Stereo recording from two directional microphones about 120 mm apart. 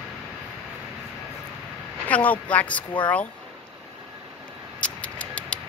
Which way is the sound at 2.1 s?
10° left (ahead or behind).